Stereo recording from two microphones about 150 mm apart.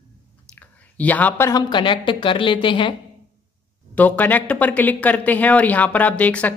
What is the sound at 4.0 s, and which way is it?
Speech, 10° left (ahead or behind).